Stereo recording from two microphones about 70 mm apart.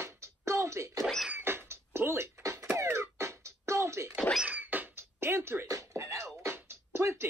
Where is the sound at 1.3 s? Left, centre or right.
Right.